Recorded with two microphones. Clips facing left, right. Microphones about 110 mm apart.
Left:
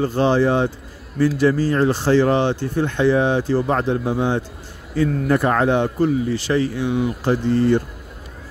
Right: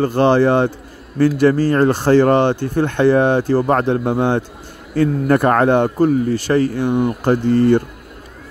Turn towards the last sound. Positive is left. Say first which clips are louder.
# right 4 dB
turn(degrees=-55)  # may be behind; listen again after turning